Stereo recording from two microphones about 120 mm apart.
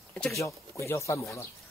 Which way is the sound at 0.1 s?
10° left (ahead or behind).